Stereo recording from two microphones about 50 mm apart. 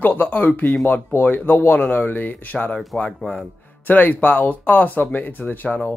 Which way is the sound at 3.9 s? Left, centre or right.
Left.